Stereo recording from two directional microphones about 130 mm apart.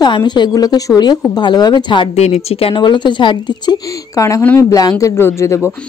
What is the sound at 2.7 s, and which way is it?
Speech, 35° left (ahead or behind).